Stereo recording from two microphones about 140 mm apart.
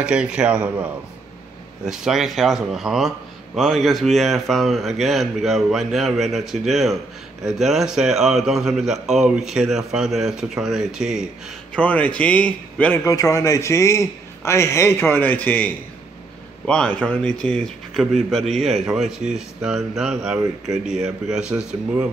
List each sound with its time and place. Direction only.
0.0 s a man's voice: 5° right (ahead or behind)
11.7 s a man's voice: 10° left (ahead or behind)
13.0 s a man's voice: 25° left (ahead or behind); by 21.6 s 5° right (ahead or behind)